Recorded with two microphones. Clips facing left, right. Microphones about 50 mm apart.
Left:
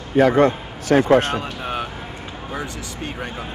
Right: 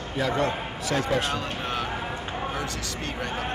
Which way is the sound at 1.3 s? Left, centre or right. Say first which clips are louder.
Left 4 dB; centre.